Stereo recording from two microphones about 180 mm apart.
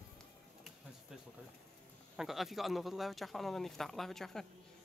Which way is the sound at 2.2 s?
Centre (ahead or behind).